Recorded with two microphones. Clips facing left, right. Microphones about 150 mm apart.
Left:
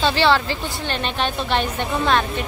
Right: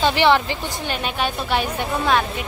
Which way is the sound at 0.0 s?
15° right (ahead or behind).